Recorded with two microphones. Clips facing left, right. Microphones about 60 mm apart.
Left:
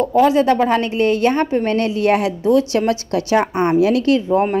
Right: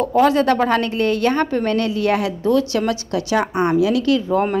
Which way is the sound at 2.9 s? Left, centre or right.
Left.